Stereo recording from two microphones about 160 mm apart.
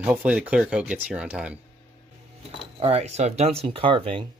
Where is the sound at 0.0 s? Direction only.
10° right (ahead or behind).